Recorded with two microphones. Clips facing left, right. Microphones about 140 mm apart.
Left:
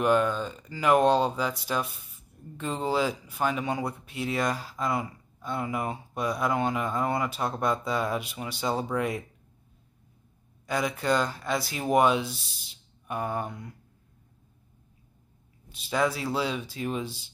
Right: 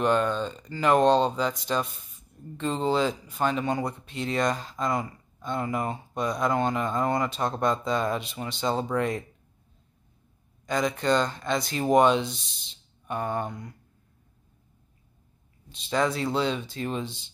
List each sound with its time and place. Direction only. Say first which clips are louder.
0.0 s speech: even; 10° left (ahead or behind)
10.7 s speech: right 2 dB; 5° left (ahead or behind)
15.7 s speech: right 1 dB; 5° left (ahead or behind)